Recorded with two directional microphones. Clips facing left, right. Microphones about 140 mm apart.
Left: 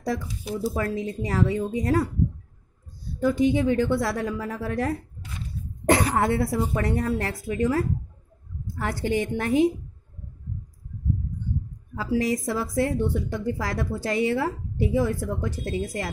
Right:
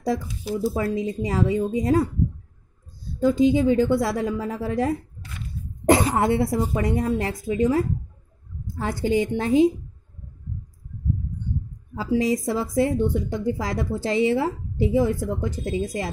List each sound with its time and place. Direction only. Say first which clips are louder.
0.3 s speech: right 3 dB; centre (ahead or behind)
0.9 s a woman's voice: right 2 dB; 20° right (ahead or behind)
3.2 s a woman's voice: right 3 dB; 20° right (ahead or behind)
11.9 s a woman's voice: right 2 dB; 25° right (ahead or behind)